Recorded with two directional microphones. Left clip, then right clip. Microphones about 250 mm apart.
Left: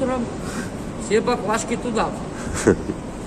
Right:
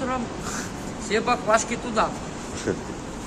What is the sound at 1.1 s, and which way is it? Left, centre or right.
Speech, centre.